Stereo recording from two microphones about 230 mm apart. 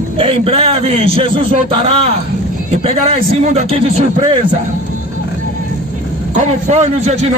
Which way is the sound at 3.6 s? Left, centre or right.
Right.